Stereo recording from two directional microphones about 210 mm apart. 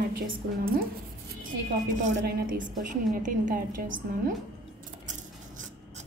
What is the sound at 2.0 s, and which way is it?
A woman's voice, 40° right (ahead or behind).